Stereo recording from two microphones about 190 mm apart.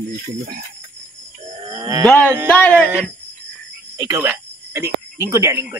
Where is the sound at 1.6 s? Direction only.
25° right (ahead or behind).